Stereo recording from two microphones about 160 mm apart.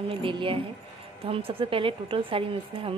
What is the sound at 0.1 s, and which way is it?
A woman's voice, 30° right (ahead or behind).